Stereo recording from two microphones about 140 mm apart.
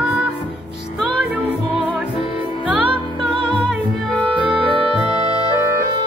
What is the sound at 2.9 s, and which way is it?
Music, 35° right (ahead or behind).